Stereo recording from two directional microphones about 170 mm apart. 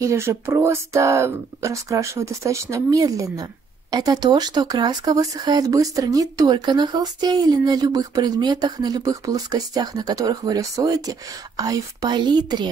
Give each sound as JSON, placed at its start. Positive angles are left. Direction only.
{"t": 0.0, "sound": "speech", "side_deg": -15}